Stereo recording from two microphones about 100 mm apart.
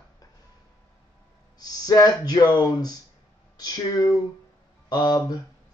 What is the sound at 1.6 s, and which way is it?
Speech, 40° left (ahead or behind).